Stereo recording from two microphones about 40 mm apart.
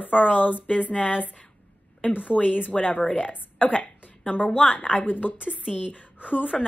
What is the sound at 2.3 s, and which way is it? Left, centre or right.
A woman's voice, left.